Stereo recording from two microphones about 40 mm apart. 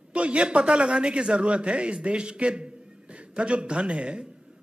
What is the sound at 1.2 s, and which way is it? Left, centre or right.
A man's voice, right.